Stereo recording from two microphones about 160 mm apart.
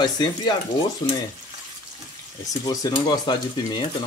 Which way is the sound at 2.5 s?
20° left (ahead or behind).